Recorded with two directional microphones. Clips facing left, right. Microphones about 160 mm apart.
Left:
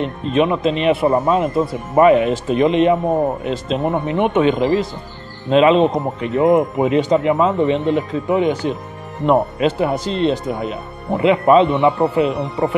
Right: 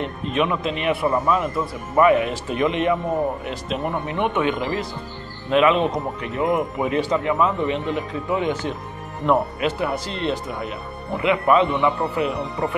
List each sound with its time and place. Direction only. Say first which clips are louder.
0.0 s a man's voice: left 6 dB; 25° left (ahead or behind)